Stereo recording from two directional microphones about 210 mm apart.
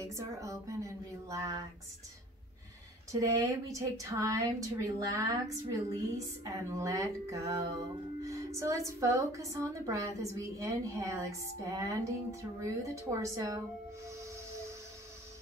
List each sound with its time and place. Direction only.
0.0 s a woman's voice: 15° right (ahead or behind)
3.1 s a woman's voice: 15° right (ahead or behind)
14.2 s a sound: 15° right (ahead or behind)